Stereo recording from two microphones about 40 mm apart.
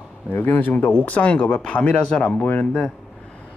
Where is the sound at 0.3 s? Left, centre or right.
Left.